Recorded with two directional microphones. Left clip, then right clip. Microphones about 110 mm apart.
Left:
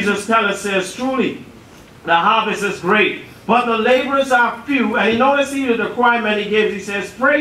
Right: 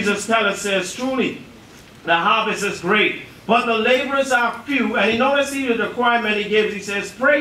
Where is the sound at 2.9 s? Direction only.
10° right (ahead or behind).